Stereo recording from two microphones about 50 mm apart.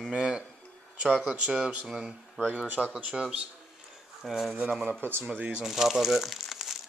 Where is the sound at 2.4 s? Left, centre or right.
Right.